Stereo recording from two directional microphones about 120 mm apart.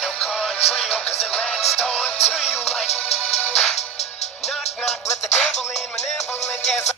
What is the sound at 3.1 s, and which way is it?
Music, 60° left (ahead or behind).